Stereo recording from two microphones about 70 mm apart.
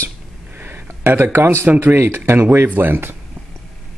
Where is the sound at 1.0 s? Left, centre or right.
Right.